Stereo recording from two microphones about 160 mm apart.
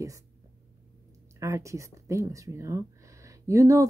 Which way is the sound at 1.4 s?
20° right (ahead or behind).